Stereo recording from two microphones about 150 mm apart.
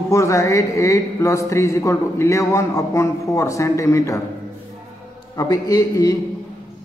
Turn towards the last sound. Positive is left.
turn(degrees=25)  # may be behind; listen again after turning